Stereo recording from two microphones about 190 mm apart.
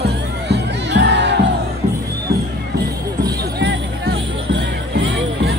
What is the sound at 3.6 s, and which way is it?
Music, 65° right (ahead or behind).